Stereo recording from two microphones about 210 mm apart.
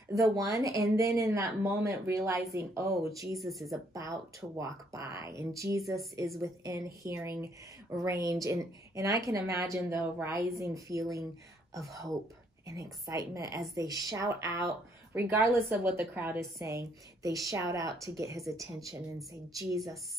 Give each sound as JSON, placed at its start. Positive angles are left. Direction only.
{"t": 0.1, "sound": "a woman's voice", "side_deg": -15}
{"t": 3.3, "sound": "speech", "side_deg": 0}
{"t": 3.7, "sound": "a woman's voice", "side_deg": -15}